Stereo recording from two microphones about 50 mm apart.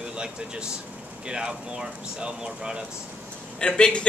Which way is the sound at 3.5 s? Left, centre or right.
Centre.